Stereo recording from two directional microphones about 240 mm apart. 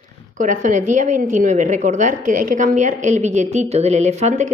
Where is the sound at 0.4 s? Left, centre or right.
Right.